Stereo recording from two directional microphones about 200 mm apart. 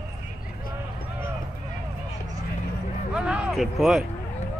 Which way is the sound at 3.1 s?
5° right (ahead or behind).